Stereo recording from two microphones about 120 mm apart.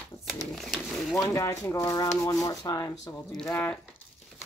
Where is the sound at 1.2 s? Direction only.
25° left (ahead or behind).